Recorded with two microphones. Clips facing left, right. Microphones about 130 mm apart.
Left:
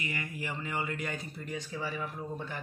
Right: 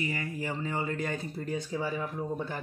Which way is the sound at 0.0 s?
35° right (ahead or behind).